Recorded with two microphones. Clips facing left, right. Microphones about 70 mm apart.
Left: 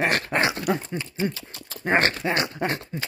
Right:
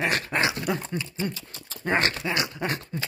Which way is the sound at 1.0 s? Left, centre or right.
Left.